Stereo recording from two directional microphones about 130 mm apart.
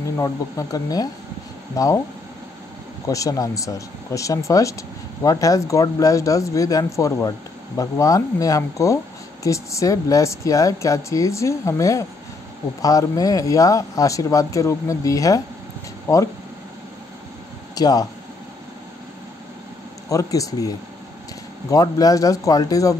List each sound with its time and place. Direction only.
0.2 s speech: 25° left (ahead or behind)
3.1 s speech: 25° left (ahead or behind)
17.7 s speech: 30° left (ahead or behind)
20.1 s speech: 25° left (ahead or behind)